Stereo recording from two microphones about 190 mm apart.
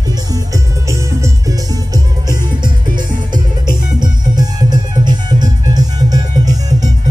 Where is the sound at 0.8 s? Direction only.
15° right (ahead or behind).